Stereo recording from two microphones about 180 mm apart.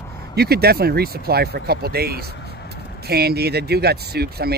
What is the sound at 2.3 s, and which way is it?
Vehicle, 65° left (ahead or behind).